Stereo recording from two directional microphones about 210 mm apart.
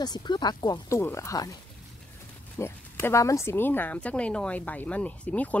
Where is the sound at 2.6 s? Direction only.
10° left (ahead or behind).